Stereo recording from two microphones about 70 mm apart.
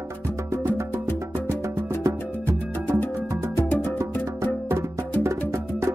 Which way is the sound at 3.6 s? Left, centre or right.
Left.